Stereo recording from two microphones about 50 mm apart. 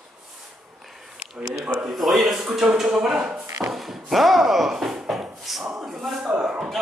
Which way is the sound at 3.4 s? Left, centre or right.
Right.